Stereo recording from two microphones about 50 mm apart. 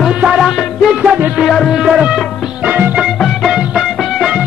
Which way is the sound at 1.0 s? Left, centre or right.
Right.